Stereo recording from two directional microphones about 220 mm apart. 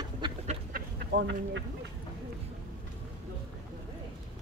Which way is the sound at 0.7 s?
50° right (ahead or behind).